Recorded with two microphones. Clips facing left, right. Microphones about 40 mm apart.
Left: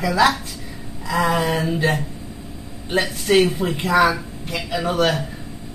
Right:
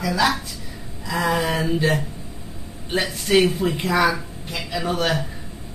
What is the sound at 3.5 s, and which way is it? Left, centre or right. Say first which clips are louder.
Speech: left 3 dB; centre.